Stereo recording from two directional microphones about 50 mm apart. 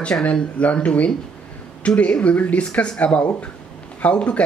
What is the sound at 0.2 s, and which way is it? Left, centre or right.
Speech, left.